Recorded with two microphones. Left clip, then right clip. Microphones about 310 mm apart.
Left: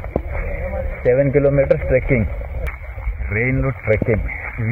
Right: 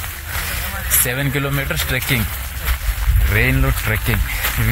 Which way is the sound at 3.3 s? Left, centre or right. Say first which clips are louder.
Right 2 dB; centre.